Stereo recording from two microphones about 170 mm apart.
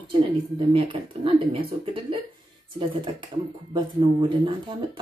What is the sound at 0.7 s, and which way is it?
Speech, 30° right (ahead or behind).